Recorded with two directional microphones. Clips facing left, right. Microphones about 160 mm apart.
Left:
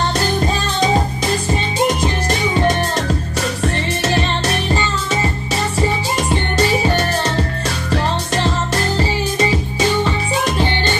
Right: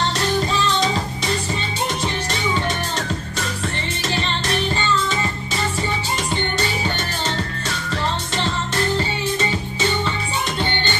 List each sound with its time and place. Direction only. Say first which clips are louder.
4.0 s music: left 5 dB; 75° left (ahead or behind)